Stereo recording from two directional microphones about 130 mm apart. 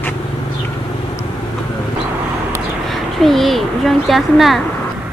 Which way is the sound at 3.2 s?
Centre (ahead or behind).